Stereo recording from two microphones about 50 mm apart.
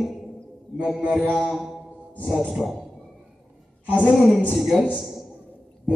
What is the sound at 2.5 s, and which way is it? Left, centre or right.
Speech, centre.